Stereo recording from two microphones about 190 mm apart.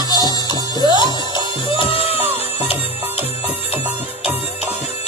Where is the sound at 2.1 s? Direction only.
10° right (ahead or behind).